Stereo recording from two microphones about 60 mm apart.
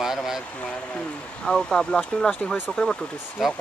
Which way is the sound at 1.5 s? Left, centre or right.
Centre.